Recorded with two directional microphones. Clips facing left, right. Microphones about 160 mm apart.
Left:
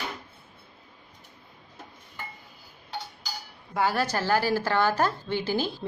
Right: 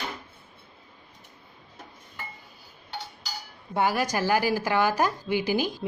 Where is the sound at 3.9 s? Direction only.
10° right (ahead or behind).